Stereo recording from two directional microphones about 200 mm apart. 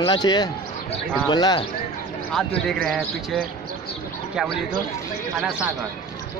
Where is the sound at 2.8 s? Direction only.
Centre (ahead or behind).